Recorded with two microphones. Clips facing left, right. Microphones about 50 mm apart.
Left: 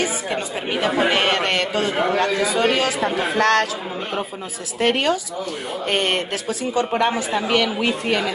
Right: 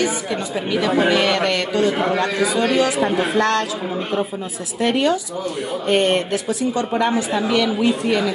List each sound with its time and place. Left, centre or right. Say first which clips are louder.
0.0 s a man's voice: right 2 dB; left
3.3 s speech: left 3 dB; left
4.7 s speech: right 1 dB; left